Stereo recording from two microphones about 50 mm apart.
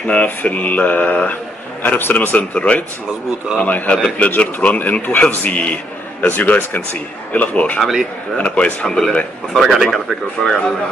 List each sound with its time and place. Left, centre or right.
0.0 s speech: left
4.7 s speech: left
7.8 s speech: centre
8.4 s speech: left
9.5 s speech: centre